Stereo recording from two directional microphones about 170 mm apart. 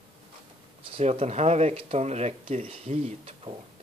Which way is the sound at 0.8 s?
35° right (ahead or behind).